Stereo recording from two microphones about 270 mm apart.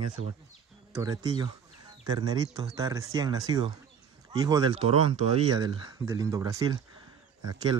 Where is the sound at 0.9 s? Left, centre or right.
Centre.